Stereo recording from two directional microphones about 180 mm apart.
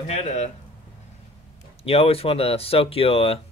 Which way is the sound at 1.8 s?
35° left (ahead or behind).